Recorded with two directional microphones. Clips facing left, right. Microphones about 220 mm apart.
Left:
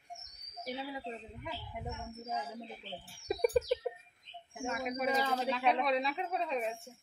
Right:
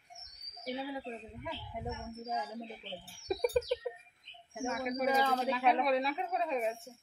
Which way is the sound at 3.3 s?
10° left (ahead or behind).